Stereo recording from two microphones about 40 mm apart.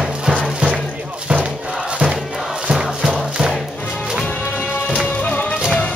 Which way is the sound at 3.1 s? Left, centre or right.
Right.